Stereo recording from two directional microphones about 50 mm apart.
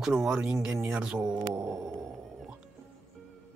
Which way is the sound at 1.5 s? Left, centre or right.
Right.